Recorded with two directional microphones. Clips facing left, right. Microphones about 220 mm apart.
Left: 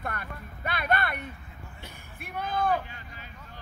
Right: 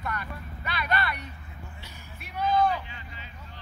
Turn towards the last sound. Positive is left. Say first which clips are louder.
# even
turn(degrees=50)  # may be behind; listen again after turning